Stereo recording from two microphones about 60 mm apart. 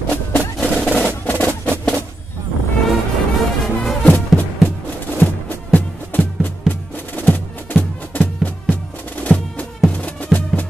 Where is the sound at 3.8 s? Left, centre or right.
Centre.